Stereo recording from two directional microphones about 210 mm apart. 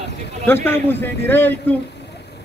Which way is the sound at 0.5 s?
10° left (ahead or behind).